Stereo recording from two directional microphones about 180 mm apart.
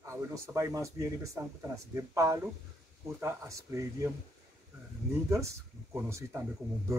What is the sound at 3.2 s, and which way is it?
Speech, 15° right (ahead or behind).